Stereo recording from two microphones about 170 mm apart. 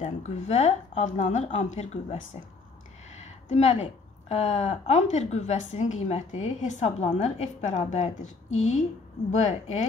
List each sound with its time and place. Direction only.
0.0 s speech: 40° left (ahead or behind)
3.4 s a woman's voice: 40° left (ahead or behind)